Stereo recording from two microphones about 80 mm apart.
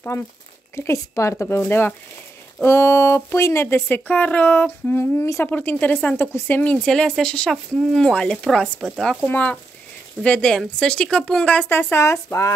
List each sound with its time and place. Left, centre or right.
0.7 s speech: left
1.6 s speech: left
4.9 s speech: left
5.4 s speech: left; by 8.9 s centre
9.2 s speech: centre
11.7 s speech: left